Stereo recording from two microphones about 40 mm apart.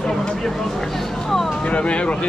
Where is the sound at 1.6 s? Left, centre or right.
Left.